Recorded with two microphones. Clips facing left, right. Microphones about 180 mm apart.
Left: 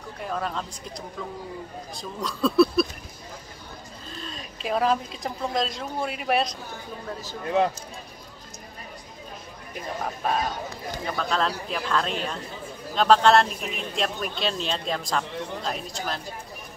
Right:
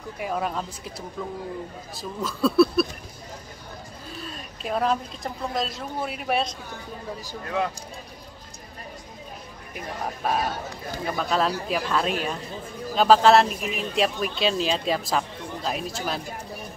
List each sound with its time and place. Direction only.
0.2 s speech: 10° right (ahead or behind)
4.1 s a woman's voice: 5° right (ahead or behind)
7.4 s speech: 25° left (ahead or behind)
10.2 s speech: 5° right (ahead or behind)